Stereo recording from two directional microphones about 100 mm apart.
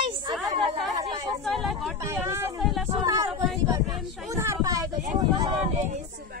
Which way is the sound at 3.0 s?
40° right (ahead or behind).